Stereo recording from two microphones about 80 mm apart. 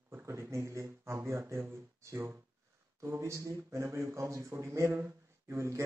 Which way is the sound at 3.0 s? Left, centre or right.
Right.